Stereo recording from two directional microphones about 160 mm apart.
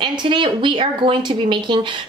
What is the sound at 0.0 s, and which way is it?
Speech, 30° right (ahead or behind).